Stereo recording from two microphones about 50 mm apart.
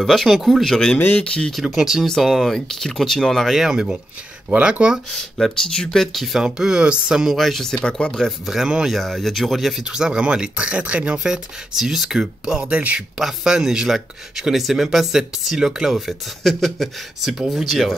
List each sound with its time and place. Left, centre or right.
0.0 s speech: centre
0.7 s speech: centre
0.9 s speech: left
1.2 s speech: centre
1.6 s speech: centre
2.0 s speech: centre
3.5 s speech: centre
5.7 s speech: centre
6.4 s speech: centre
7.2 s speech: centre
8.3 s speech: centre
8.9 s speech: centre
9.8 s speech: centre
13.2 s speech: centre